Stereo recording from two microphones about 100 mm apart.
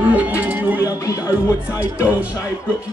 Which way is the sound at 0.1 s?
15° right (ahead or behind).